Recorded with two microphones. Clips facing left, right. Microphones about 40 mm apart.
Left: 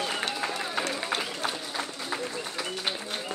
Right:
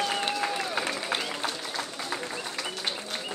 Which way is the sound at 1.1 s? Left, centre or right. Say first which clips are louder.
Even; centre.